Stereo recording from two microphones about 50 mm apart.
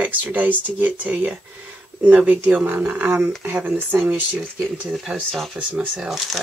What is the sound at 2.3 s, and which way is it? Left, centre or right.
Speech, right.